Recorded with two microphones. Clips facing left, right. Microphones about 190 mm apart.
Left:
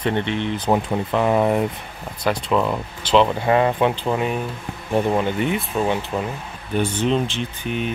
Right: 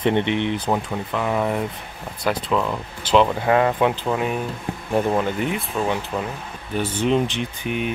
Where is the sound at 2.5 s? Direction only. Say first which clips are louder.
Left 3 dB; 15° left (ahead or behind).